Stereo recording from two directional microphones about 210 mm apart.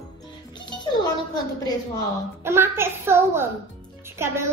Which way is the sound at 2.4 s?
10° right (ahead or behind).